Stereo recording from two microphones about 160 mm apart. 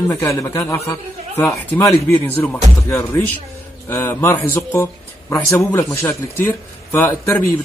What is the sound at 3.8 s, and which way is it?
Speech, 15° left (ahead or behind).